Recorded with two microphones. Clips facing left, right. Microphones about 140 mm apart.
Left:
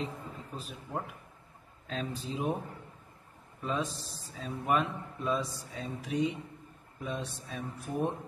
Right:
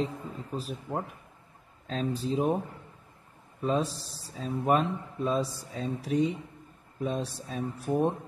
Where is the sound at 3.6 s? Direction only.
35° right (ahead or behind).